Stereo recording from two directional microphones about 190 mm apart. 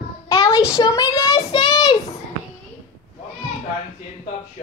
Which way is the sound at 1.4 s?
25° left (ahead or behind).